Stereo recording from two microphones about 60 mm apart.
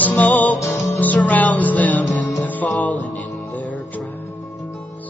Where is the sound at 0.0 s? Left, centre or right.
Left.